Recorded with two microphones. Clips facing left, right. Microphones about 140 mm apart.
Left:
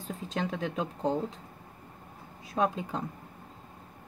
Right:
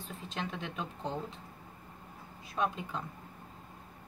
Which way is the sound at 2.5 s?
40° left (ahead or behind).